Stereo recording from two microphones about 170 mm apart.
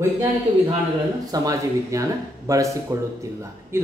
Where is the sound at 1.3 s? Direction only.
20° right (ahead or behind).